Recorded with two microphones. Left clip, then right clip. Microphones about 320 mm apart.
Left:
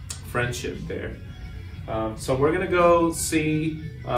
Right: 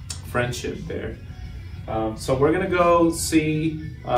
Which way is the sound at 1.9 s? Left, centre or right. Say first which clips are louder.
Right 2 dB; centre.